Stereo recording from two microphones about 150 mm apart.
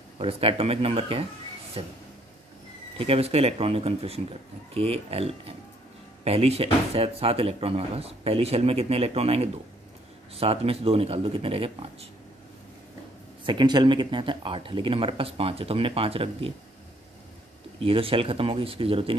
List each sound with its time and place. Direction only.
0.2 s speech: 40° right (ahead or behind)
3.0 s speech: 40° right (ahead or behind)
13.5 s speech: 30° right (ahead or behind)
17.7 s speech: 35° right (ahead or behind)